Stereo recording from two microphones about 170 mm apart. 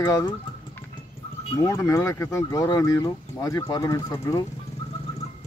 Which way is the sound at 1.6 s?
15° left (ahead or behind).